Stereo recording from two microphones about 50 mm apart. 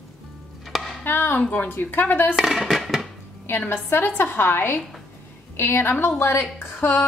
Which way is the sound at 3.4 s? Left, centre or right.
Left.